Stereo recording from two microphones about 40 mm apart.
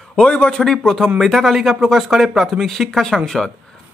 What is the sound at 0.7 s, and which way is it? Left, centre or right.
Speech, centre.